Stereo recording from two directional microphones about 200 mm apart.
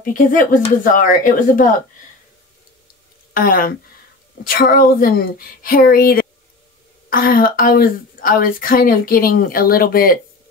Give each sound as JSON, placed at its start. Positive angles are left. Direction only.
{"t": 0.0, "sound": "speech", "side_deg": 40}
{"t": 3.3, "sound": "a woman's voice", "side_deg": 45}